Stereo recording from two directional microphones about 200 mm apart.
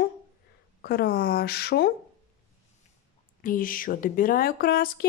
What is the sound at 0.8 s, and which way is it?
Speech, 50° left (ahead or behind).